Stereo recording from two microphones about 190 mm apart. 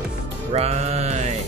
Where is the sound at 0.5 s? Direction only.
35° right (ahead or behind).